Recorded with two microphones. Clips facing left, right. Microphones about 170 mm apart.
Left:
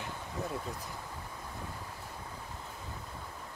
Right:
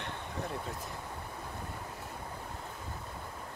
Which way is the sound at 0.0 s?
Centre (ahead or behind).